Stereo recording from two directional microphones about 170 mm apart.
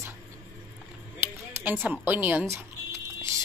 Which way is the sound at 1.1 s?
15° right (ahead or behind).